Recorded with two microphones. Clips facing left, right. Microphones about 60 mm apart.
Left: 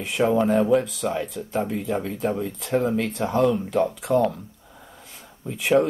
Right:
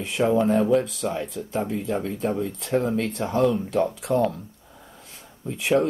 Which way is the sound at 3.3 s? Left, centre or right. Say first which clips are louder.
Left 1 dB; centre.